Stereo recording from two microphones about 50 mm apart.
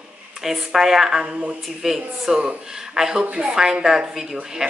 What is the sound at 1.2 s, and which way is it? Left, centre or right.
Speech, right.